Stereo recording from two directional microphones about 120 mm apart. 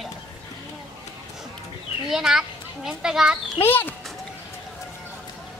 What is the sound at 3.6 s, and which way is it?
Speech, 15° left (ahead or behind).